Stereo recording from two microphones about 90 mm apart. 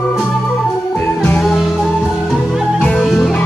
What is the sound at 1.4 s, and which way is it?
Music, centre (ahead or behind).